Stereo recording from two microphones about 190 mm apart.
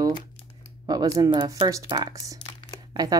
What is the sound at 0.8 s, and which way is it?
Speech, 20° right (ahead or behind).